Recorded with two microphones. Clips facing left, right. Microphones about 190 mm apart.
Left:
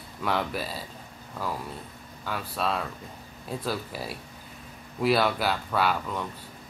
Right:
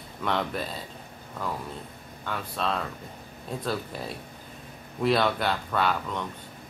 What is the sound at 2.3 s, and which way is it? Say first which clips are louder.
Speech: even; 5° left (ahead or behind).